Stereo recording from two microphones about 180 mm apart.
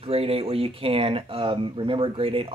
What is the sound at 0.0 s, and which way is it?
Speech, 35° right (ahead or behind).